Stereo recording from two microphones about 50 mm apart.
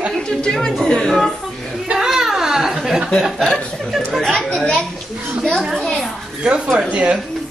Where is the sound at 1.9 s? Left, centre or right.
Centre.